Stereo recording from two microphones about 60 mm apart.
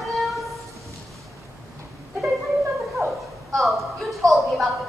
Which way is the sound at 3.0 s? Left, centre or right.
Right.